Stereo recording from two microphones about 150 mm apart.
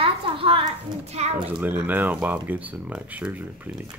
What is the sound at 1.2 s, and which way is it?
Speech, 50° right (ahead or behind).